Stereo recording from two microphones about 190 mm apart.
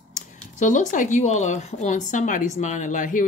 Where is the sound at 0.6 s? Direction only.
40° left (ahead or behind).